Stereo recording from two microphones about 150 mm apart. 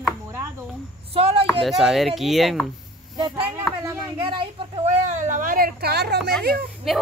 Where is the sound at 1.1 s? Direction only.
40° right (ahead or behind).